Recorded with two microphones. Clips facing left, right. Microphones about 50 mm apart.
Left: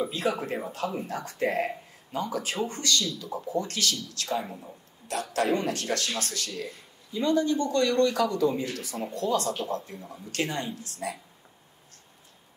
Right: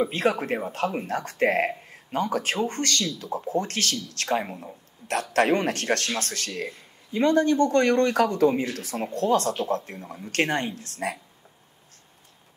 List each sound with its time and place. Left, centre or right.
0.0 s speech: right